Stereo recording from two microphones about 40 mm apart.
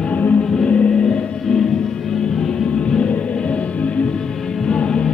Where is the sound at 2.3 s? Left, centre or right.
Centre.